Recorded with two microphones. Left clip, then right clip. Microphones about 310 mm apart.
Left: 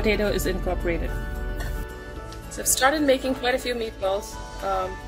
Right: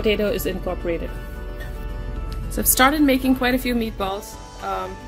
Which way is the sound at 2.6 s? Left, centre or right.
Right.